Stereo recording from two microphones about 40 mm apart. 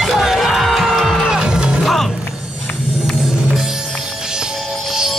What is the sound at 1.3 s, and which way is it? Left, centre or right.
Music, centre.